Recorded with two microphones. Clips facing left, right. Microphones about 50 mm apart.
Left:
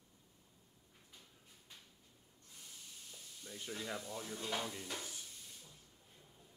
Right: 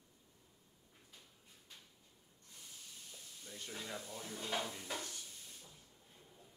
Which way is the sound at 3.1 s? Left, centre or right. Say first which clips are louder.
Left 2 dB; centre.